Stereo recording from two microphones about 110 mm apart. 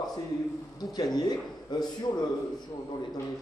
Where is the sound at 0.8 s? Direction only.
35° left (ahead or behind).